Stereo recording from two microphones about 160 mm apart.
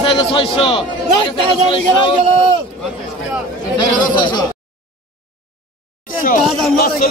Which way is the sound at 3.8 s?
30° left (ahead or behind).